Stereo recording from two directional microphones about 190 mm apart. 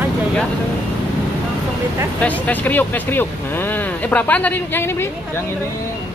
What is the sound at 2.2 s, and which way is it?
Speech, 10° left (ahead or behind).